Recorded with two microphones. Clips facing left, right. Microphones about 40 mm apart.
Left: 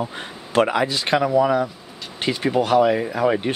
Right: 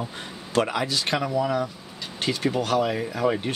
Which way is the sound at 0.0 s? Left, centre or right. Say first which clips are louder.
Left 5 dB; left.